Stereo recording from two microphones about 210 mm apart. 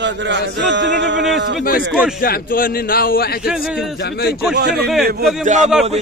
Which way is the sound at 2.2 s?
45° left (ahead or behind).